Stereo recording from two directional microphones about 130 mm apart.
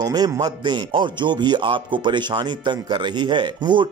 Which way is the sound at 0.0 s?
30° right (ahead or behind).